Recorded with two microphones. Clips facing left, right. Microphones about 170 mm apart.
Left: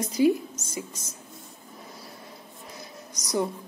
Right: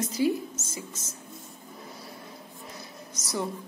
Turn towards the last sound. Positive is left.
turn(degrees=15)  # may be behind; listen again after turning